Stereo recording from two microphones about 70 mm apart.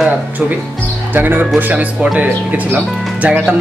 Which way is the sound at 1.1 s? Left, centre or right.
Right.